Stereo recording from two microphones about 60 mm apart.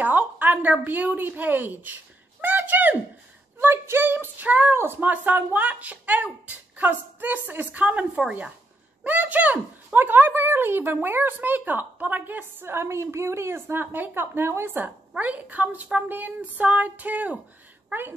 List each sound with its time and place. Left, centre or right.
0.0 s a woman's voice: right
3.5 s speech: right